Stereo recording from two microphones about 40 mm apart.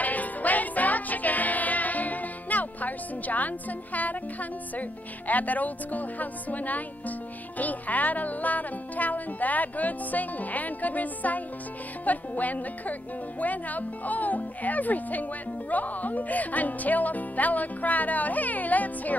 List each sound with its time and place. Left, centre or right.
0.0 s music: left
12.0 s speech: left